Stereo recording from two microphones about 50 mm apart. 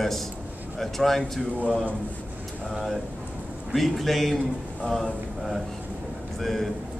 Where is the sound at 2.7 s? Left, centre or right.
Centre.